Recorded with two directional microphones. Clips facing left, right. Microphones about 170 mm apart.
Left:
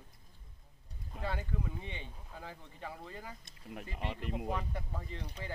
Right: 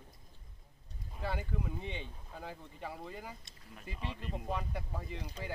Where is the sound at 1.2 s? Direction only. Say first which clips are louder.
Right 1 dB; 10° right (ahead or behind).